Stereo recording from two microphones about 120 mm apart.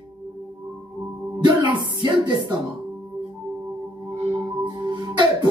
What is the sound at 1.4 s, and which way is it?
Speech, 40° right (ahead or behind).